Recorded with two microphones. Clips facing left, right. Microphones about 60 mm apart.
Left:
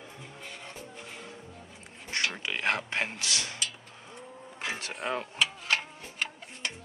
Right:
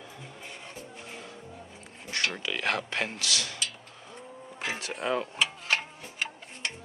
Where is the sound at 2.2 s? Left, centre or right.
Left.